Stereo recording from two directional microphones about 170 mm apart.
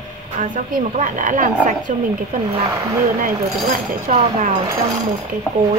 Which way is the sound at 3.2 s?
50° right (ahead or behind).